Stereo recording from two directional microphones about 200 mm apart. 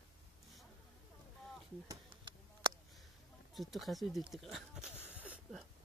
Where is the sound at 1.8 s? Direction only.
20° right (ahead or behind).